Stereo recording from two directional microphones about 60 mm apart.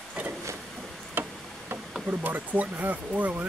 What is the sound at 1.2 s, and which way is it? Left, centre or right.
Tick-tock, right.